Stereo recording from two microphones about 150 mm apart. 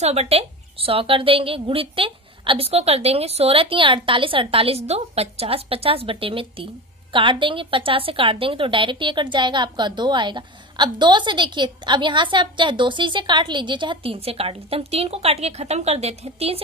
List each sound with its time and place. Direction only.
0.0 s a woman's voice: 45° right (ahead or behind)